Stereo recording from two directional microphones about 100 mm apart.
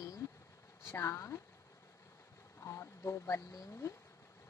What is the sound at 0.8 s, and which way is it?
Speech, 25° left (ahead or behind).